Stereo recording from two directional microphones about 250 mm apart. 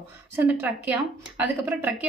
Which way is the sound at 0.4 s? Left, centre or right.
Centre.